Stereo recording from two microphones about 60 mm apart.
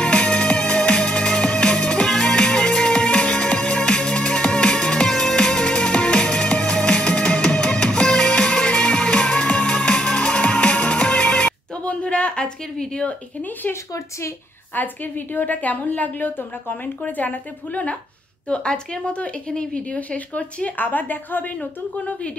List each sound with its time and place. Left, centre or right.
0.0 s music: centre
14.8 s a woman's voice: left